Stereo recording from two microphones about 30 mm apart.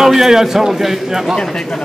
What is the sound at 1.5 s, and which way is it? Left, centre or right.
Speech, left.